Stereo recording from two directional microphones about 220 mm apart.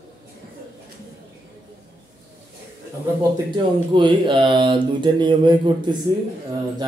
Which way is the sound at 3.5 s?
20° right (ahead or behind).